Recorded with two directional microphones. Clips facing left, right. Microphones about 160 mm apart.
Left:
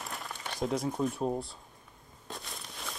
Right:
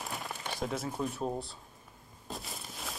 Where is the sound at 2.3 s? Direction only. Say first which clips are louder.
Right 1 dB; centre (ahead or behind).